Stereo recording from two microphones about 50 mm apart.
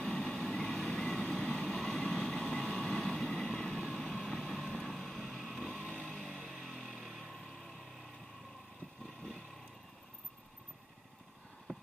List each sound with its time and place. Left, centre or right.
0.0 s vehicle: centre
2.8 s vehicle: centre
6.1 s music: centre
7.2 s vehicle: centre
9.0 s vehicle: centre
11.7 s clip-clop: centre